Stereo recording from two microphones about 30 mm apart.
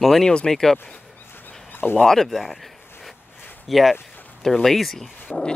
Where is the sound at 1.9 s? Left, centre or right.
Centre.